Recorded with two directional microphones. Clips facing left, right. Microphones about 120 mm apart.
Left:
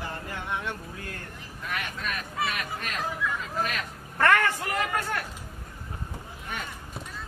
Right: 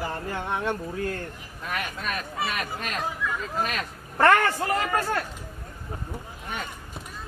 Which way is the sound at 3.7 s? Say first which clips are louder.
Right 3 dB; 30° right (ahead or behind).